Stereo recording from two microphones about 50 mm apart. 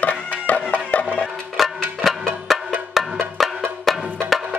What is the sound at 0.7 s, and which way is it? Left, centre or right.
Music, left.